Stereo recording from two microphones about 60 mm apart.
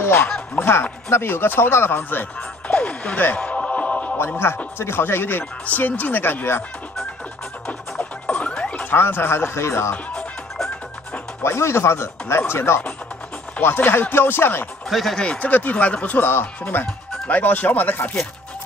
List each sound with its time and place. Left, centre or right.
0.0 s a sound: left
1.1 s speech: left
2.7 s music: left
4.4 s speech: left
7.6 s music: left
8.9 s speech: left
11.4 s speech: left
14.9 s speech: centre
15.1 s speech: centre
15.5 s speech: left